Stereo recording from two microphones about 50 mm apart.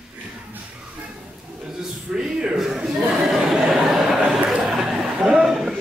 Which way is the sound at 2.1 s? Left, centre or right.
Centre.